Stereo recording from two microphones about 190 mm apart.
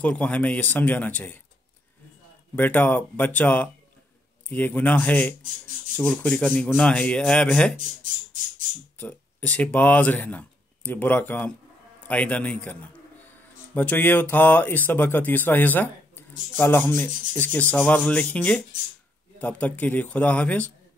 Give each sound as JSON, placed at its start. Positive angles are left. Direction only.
{"t": 0.0, "sound": "speech", "side_deg": 5}
{"t": 2.5, "sound": "speech", "side_deg": 10}
{"t": 8.9, "sound": "speech", "side_deg": 10}
{"t": 13.7, "sound": "speech", "side_deg": 10}